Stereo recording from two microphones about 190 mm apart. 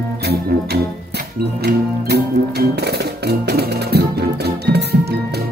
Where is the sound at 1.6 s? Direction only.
60° right (ahead or behind).